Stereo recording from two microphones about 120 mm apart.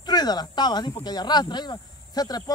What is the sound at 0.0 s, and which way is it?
Speech, 35° left (ahead or behind).